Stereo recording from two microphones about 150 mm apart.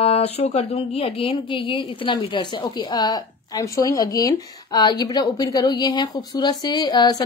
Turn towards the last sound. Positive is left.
turn(degrees=25)  # may be behind; listen again after turning